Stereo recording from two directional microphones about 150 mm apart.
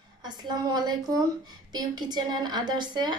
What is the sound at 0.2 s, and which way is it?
A woman's voice, 30° right (ahead or behind).